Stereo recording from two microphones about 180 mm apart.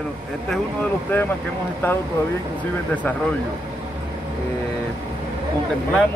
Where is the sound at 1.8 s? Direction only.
10° left (ahead or behind).